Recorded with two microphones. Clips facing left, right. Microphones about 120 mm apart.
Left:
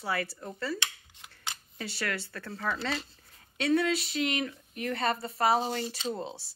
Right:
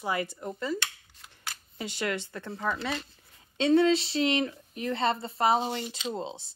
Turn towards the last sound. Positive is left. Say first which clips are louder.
# right 1 dB
turn(degrees=-20)  # may be behind; listen again after turning